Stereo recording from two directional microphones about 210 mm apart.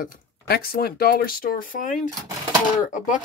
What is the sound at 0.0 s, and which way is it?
Speech, 45° left (ahead or behind).